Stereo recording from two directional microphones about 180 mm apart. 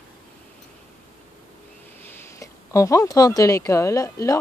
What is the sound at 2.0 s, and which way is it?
Speech, 15° left (ahead or behind).